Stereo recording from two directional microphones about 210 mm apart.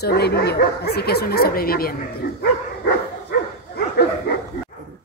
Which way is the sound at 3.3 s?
50° left (ahead or behind).